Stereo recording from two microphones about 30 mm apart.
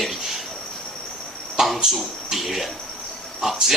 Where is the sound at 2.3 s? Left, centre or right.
Centre.